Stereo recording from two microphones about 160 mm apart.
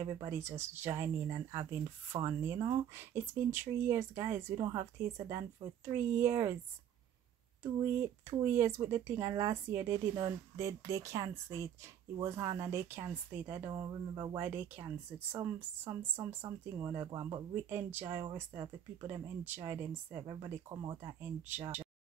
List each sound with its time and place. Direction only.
0.2 s speech: 15° right (ahead or behind)
5.9 s speech: 15° right (ahead or behind)
7.8 s speech: 15° right (ahead or behind)
13.7 s speech: 20° right (ahead or behind)
20.2 s speech: 25° right (ahead or behind)